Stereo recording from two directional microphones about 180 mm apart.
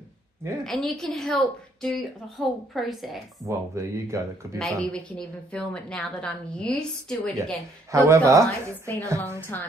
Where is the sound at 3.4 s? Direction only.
15° right (ahead or behind).